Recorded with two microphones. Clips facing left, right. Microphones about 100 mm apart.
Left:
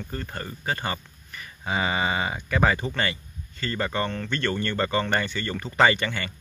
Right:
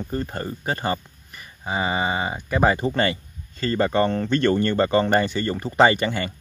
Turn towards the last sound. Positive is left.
turn(degrees=-30)  # may be behind; listen again after turning